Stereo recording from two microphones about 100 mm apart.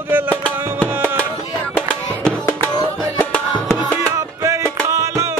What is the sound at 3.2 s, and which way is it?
Music, 20° left (ahead or behind).